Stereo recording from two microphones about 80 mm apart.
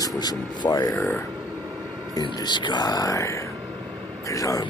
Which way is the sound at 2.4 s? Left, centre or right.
Left.